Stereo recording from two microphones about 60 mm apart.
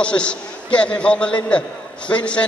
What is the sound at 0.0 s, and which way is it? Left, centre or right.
A man's voice, centre.